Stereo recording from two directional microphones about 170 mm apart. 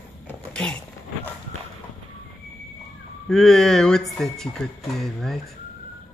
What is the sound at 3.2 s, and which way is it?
Speech, 5° left (ahead or behind).